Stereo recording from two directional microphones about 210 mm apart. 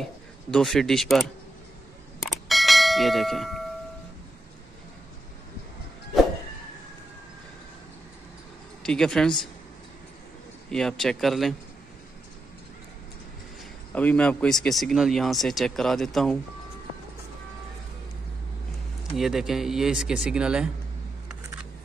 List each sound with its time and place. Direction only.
0.0 s speech: 5° left (ahead or behind)
2.2 s bell: centre (ahead or behind)
8.8 s speech: 5° left (ahead or behind)
10.7 s speech: centre (ahead or behind)
13.9 s speech: 5° left (ahead or behind)
19.1 s speech: centre (ahead or behind)